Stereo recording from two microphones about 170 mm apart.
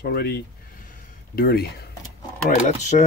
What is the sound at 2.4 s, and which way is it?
Speech, 45° left (ahead or behind).